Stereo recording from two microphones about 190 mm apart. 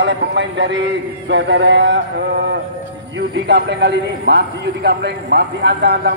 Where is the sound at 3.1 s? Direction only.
65° right (ahead or behind).